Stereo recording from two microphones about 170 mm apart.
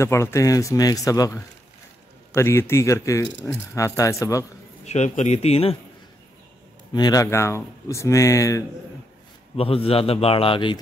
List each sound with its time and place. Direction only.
0.0 s speech: 15° left (ahead or behind)
4.8 s a man's voice: 40° left (ahead or behind)
6.9 s speech: 25° left (ahead or behind)
9.6 s a man's voice: 35° left (ahead or behind)